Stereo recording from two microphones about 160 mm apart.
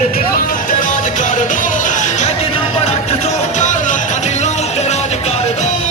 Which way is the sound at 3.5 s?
50° left (ahead or behind).